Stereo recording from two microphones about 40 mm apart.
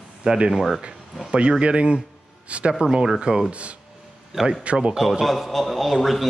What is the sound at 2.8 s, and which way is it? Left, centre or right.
Mantra, centre.